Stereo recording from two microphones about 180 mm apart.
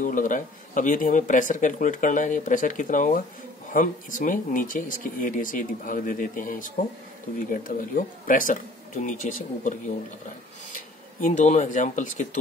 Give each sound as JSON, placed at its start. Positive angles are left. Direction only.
{"t": 0.0, "sound": "speech", "side_deg": 45}